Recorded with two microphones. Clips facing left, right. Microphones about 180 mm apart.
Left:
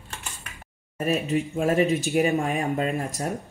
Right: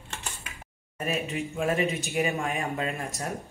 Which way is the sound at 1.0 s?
40° left (ahead or behind).